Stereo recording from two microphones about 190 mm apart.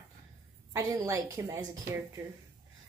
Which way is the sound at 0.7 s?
15° right (ahead or behind).